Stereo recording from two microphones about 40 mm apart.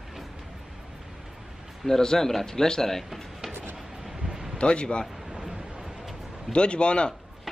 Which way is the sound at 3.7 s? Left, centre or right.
Centre.